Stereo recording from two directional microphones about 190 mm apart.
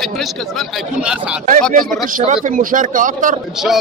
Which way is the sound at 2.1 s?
40° right (ahead or behind).